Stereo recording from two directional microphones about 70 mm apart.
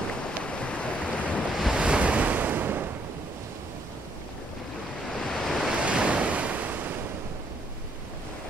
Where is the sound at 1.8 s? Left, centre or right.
Centre.